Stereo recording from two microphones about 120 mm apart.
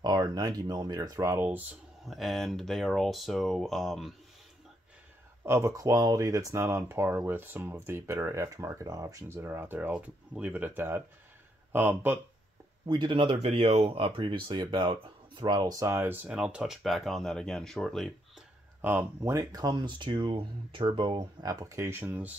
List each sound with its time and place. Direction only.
0.0 s speech: 35° right (ahead or behind); by 1.8 s 15° right (ahead or behind)
2.0 s speech: centre (ahead or behind)
5.4 s speech: 25° right (ahead or behind)
12.8 s speech: 40° right (ahead or behind)
13.5 s speech: 55° right (ahead or behind); by 18.1 s 5° left (ahead or behind)
18.8 s speech: 15° right (ahead or behind)